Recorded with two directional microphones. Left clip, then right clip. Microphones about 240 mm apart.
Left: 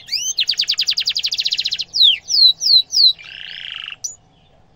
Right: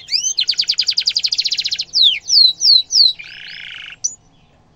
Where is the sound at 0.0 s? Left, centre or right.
Centre.